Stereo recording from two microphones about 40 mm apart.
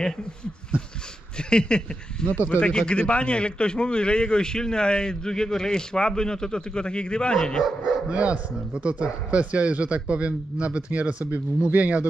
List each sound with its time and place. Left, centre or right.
1.5 s a man's voice: left
2.3 s speech: left
2.6 s a man's voice: left
7.6 s speech: centre
8.1 s a man's voice: right